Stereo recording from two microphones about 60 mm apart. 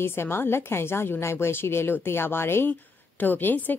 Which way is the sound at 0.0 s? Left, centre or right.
Left.